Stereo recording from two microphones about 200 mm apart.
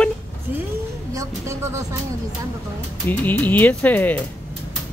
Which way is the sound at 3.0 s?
10° left (ahead or behind).